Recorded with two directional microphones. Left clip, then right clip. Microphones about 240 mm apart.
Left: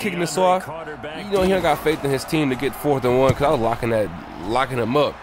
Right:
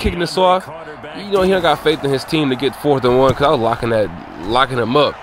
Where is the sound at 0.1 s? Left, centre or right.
Centre.